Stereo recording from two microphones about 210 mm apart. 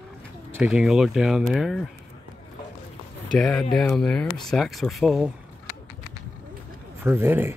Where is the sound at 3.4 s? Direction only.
Centre (ahead or behind).